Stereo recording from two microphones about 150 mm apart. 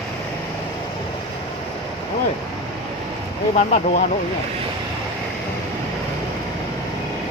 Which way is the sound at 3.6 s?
65° left (ahead or behind).